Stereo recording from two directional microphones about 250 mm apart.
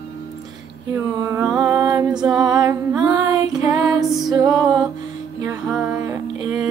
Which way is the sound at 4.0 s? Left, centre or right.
Centre.